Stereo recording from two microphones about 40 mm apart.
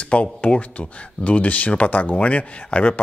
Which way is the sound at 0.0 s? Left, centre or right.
Left.